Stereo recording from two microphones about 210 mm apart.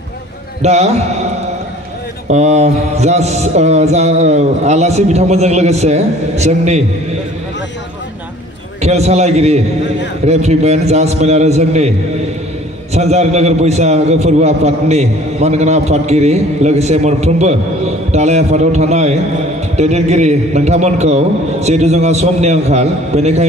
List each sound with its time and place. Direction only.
0.6 s a man's voice: 30° right (ahead or behind)
2.2 s a man's voice: 30° right (ahead or behind)
8.8 s a man's voice: 30° right (ahead or behind)
12.9 s a man's voice: 30° right (ahead or behind)